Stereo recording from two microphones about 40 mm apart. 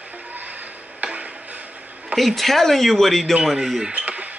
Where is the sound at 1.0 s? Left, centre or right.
Right.